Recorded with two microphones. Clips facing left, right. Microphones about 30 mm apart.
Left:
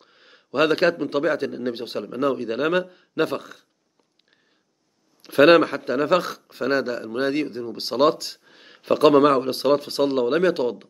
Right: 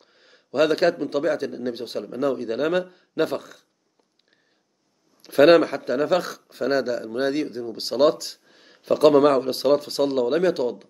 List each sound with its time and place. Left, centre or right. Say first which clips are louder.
0.0 s a man's voice: left 2 dB; centre
5.4 s speech: even; centre
6.0 s speech: left 2 dB; left
6.9 s speech: even; left
8.1 s speech: left 1 dB; left
8.5 s a sound: left 1 dB; left
9.0 s a man's voice: even; centre